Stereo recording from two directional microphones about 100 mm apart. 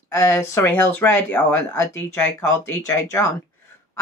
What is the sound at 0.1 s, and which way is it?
Speech, 30° left (ahead or behind).